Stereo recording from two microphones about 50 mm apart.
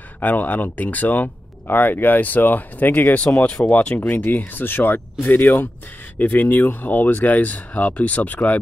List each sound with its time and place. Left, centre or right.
0.2 s speech: left